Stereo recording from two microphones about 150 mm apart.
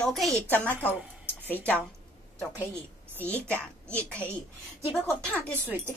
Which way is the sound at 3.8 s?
10° left (ahead or behind).